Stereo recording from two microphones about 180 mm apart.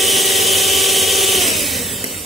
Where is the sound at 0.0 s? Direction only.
Centre (ahead or behind).